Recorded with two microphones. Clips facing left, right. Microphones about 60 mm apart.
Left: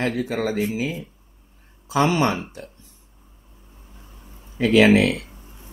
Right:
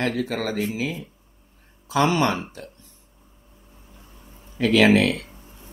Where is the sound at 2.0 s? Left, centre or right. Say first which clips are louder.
Even; centre.